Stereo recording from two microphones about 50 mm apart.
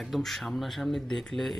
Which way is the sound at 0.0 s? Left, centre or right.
Centre.